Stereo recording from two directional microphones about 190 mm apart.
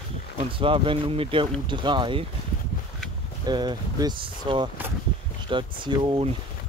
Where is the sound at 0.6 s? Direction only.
30° right (ahead or behind).